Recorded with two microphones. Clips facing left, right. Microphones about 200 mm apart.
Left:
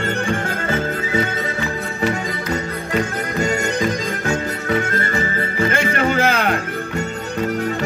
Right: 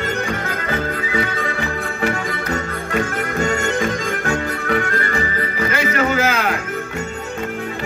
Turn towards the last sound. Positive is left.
turn(degrees=30)  # may be behind; listen again after turning